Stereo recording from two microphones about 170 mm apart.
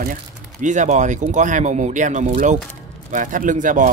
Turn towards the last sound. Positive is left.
turn(degrees=-50)  # may be behind; listen again after turning